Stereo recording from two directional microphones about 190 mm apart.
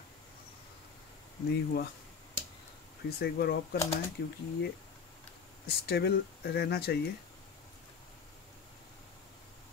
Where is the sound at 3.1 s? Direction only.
55° left (ahead or behind).